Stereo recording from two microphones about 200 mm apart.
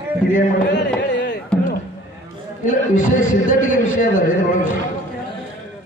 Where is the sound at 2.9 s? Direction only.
40° left (ahead or behind).